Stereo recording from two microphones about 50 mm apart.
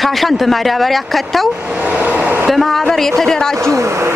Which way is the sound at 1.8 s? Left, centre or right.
Right.